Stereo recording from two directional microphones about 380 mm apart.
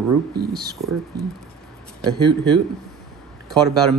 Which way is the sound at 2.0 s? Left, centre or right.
Centre.